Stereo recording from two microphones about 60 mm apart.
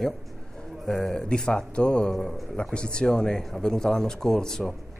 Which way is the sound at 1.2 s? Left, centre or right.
Centre.